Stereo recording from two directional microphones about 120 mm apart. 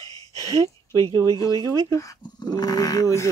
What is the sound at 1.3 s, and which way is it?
Speech, 30° left (ahead or behind).